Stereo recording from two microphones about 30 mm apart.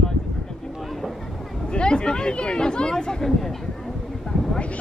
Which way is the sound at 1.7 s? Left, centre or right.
Left.